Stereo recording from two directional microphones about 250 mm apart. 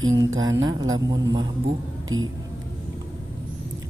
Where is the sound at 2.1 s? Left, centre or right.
Right.